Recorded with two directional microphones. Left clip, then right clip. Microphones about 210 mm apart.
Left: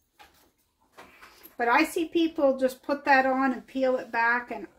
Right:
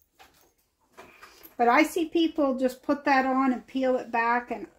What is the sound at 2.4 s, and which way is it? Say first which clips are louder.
Speech: left 2 dB; 35° right (ahead or behind).